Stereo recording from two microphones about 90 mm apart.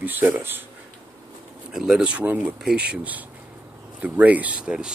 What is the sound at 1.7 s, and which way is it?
Speech, 5° right (ahead or behind).